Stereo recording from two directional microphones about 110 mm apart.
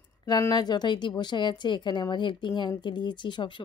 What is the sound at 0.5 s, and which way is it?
Speech, 40° left (ahead or behind).